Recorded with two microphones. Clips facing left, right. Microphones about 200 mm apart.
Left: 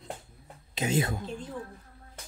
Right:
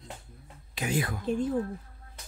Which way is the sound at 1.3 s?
50° right (ahead or behind).